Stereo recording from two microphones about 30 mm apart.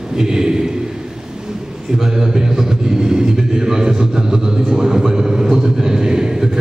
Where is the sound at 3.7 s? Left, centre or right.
Centre.